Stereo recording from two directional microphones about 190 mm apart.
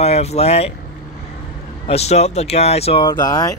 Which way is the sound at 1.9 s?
35° left (ahead or behind).